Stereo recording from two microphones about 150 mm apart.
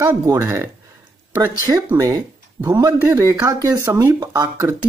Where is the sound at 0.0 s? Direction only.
20° right (ahead or behind).